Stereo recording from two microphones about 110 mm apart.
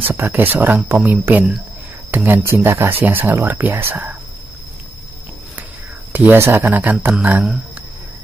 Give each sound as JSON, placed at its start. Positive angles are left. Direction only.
{"t": 0.1, "sound": "speech", "side_deg": -20}
{"t": 6.1, "sound": "speech", "side_deg": -20}